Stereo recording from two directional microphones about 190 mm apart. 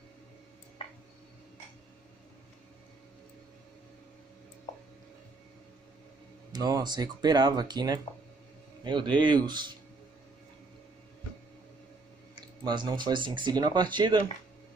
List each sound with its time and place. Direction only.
6.5 s speech: 20° right (ahead or behind)
12.6 s speech: 25° right (ahead or behind)